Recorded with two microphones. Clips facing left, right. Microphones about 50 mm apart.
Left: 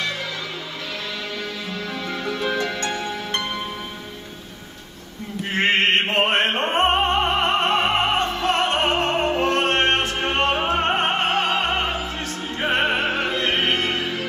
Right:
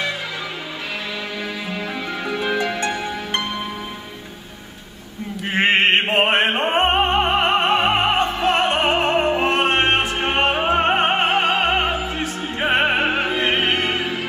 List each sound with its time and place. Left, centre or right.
1.7 s music: centre
5.5 s opera: centre